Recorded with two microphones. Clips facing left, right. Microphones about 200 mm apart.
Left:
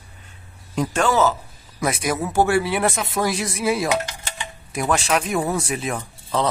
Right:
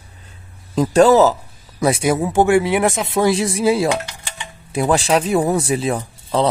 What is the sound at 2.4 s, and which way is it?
Speech, 15° right (ahead or behind).